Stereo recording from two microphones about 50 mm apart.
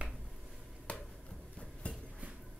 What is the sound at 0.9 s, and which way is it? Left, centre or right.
Finger snapping, left.